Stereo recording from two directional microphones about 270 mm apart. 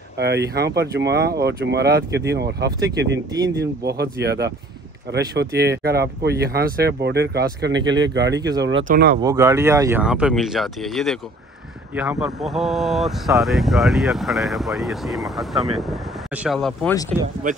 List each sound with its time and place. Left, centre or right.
0.2 s speech: right
8.4 s speech: centre
8.8 s speech: right
9.2 s speech: centre
17.1 s speech: right